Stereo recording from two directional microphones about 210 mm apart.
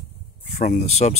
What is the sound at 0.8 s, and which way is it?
Speech, 30° left (ahead or behind).